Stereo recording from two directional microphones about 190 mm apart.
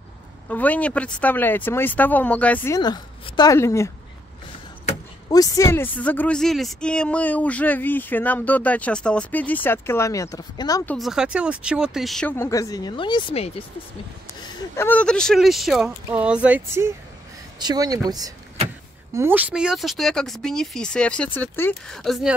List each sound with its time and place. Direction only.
0.5 s speech: 10° left (ahead or behind)
5.3 s speech: 15° left (ahead or behind)
10.9 s speech: centre (ahead or behind); by 13.5 s 30° left (ahead or behind)
14.8 s speech: 5° left (ahead or behind)